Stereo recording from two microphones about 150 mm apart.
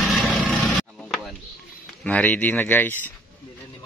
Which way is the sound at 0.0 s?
Centre (ahead or behind).